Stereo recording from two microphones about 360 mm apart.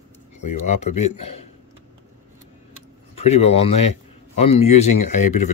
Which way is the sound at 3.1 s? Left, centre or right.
Centre.